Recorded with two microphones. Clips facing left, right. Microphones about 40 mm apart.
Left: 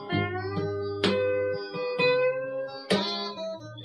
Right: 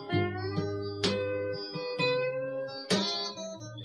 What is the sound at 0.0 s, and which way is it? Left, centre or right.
Music, left.